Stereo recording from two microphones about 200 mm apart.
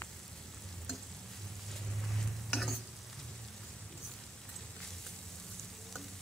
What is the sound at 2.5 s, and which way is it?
Stir, centre (ahead or behind).